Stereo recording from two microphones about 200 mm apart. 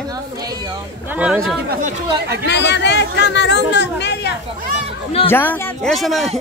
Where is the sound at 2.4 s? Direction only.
60° left (ahead or behind).